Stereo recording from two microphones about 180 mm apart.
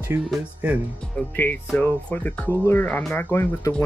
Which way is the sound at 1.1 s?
10° left (ahead or behind).